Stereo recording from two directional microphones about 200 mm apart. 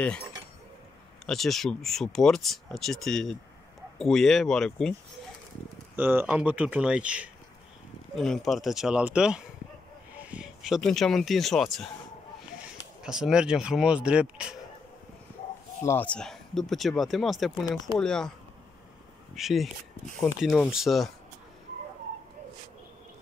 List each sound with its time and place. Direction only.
1.2 s speech: centre (ahead or behind)
5.9 s speech: 10° right (ahead or behind)
15.8 s speech: 10° left (ahead or behind)
17.6 s speech: 20° left (ahead or behind)
17.9 s speech: 5° left (ahead or behind)
19.3 s speech: centre (ahead or behind)